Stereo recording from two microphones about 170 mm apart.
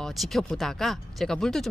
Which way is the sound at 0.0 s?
Centre (ahead or behind).